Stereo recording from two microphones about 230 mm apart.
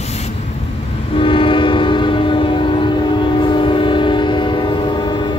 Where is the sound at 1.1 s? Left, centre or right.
Left.